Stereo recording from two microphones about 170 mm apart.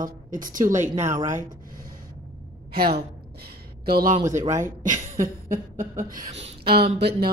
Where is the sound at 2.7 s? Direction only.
65° right (ahead or behind).